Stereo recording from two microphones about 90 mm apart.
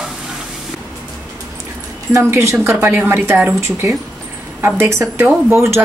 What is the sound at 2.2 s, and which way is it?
Speech, 30° right (ahead or behind).